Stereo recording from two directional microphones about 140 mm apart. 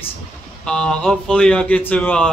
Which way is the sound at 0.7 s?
5° left (ahead or behind).